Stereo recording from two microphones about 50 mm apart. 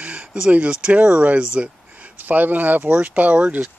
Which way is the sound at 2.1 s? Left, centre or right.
Right.